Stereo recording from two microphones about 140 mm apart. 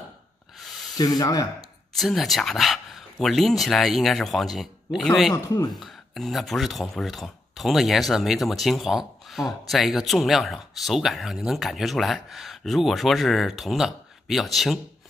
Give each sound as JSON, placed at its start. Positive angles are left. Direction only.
{"t": 0.6, "sound": "spray", "side_deg": 0}
{"t": 0.9, "sound": "speech", "side_deg": 25}
{"t": 2.0, "sound": "speech", "side_deg": 0}
{"t": 5.3, "sound": "speech", "side_deg": 25}
{"t": 5.7, "sound": "speech", "side_deg": 0}